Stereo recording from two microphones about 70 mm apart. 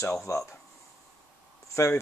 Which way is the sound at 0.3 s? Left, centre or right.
Left.